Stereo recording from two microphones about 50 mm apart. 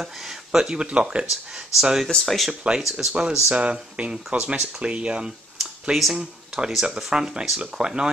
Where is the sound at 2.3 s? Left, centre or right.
Centre.